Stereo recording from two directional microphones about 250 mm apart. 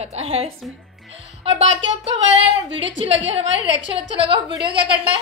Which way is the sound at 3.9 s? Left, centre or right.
Right.